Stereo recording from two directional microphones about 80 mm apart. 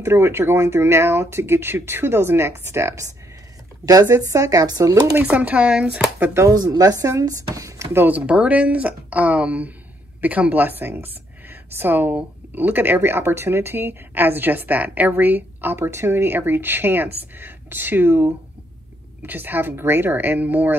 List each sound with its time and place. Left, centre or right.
0.0 s speech: right
3.8 s speech: right
5.2 s speech: centre
6.3 s speech: right
7.9 s a woman's voice: right
8.3 s a woman's voice: centre